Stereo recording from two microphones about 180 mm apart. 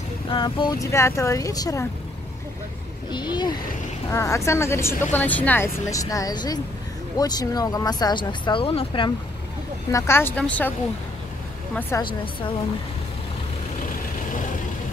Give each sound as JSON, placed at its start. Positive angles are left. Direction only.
{"t": 0.3, "sound": "speech", "side_deg": 25}
{"t": 3.1, "sound": "a woman's voice", "side_deg": 25}
{"t": 9.8, "sound": "a woman's voice", "side_deg": 15}
{"t": 12.0, "sound": "speech", "side_deg": 25}